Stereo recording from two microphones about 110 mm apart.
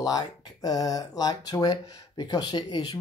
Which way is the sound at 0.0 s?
35° left (ahead or behind).